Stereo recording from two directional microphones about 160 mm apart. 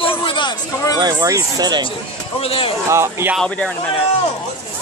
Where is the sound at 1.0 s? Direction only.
25° right (ahead or behind).